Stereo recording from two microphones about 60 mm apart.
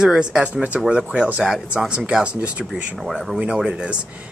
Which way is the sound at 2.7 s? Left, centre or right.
Centre.